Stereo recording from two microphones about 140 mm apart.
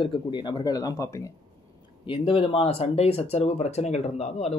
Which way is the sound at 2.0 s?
40° left (ahead or behind).